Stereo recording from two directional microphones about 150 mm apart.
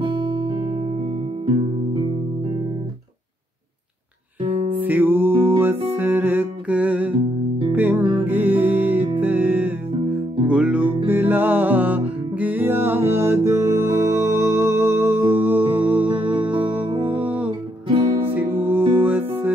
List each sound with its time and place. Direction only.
0.0 s music: 30° right (ahead or behind)
4.8 s music: 10° right (ahead or behind)
17.5 s music: 35° right (ahead or behind)
18.3 s music: 15° right (ahead or behind)